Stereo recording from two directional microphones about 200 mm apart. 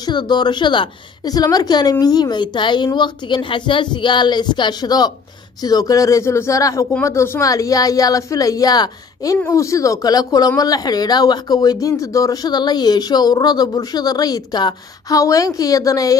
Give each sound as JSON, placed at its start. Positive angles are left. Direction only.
{"t": 0.0, "sound": "speech", "side_deg": 20}